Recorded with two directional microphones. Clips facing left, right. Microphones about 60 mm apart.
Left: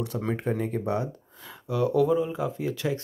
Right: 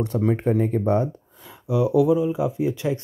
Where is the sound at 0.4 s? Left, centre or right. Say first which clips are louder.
Right 7 dB; right.